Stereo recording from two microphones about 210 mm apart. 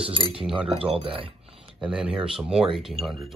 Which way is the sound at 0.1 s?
25° right (ahead or behind).